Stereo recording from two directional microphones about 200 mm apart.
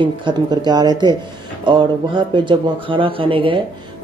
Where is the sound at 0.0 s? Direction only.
25° right (ahead or behind).